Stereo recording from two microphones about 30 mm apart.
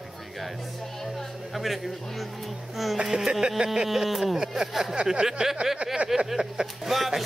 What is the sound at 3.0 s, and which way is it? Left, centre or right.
Speech, centre.